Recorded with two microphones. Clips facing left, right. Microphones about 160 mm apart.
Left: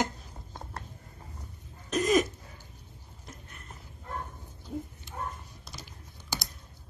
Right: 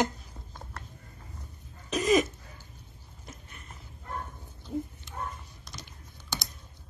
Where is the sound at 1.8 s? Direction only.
Centre (ahead or behind).